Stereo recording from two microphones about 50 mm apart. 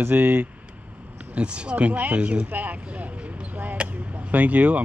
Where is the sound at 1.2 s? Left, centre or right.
Right.